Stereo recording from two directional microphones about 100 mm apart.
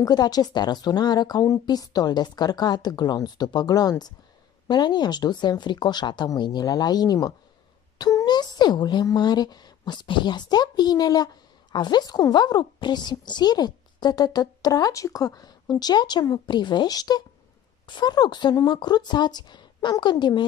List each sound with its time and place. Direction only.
0.0 s a woman's voice: 40° left (ahead or behind)